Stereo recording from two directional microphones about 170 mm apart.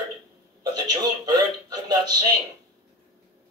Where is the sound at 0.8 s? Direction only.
25° right (ahead or behind).